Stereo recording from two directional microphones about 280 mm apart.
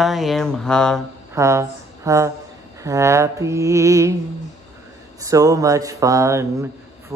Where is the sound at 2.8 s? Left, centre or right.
Centre.